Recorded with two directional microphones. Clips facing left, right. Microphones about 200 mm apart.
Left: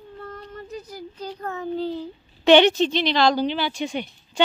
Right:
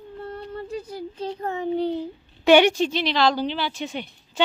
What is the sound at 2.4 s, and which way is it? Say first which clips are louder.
Speech: left 1 dB; 10° right (ahead or behind).